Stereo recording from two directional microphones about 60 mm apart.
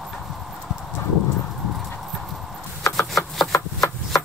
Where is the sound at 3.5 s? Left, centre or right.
Left.